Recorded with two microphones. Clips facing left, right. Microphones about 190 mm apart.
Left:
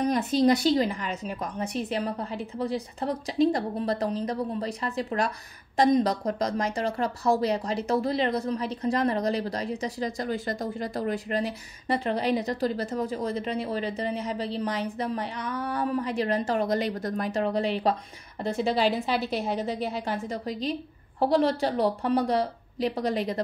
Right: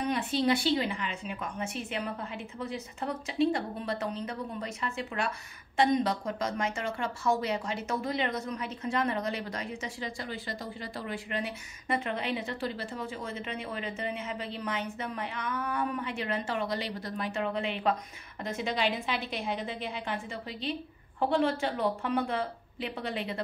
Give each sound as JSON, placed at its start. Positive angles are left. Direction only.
{"t": 0.0, "sound": "a woman's voice", "side_deg": 40}